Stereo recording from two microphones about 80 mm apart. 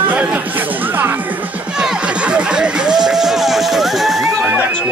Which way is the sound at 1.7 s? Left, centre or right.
Centre.